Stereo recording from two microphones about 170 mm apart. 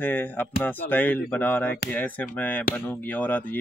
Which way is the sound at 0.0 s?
10° left (ahead or behind).